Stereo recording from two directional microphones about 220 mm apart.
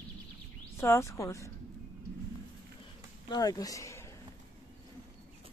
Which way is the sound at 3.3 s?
15° left (ahead or behind).